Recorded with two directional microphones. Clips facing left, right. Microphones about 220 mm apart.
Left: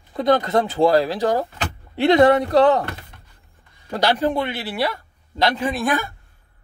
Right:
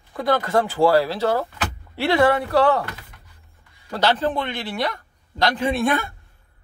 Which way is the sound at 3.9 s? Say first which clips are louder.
Left 1 dB; 15° left (ahead or behind).